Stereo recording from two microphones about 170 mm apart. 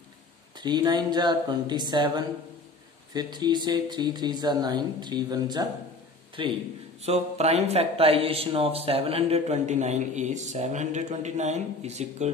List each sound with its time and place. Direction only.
0.6 s speech: 25° right (ahead or behind); by 12.3 s 40° right (ahead or behind)